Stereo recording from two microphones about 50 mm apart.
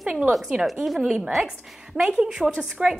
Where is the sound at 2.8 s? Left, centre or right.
Right.